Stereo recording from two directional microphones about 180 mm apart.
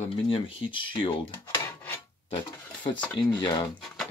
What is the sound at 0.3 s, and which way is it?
Speech, 30° left (ahead or behind).